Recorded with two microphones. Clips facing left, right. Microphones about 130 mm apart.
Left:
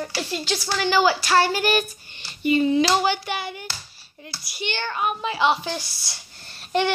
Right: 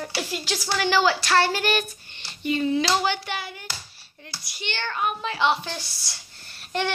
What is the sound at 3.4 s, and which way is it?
Female singing, 20° left (ahead or behind).